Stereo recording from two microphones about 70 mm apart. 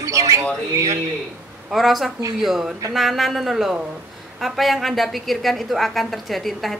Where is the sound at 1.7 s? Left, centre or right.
Centre.